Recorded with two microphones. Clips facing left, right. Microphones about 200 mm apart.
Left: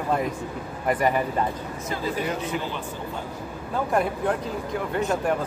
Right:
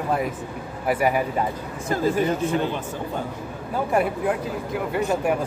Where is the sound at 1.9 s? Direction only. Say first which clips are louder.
Right 7 dB; 50° right (ahead or behind).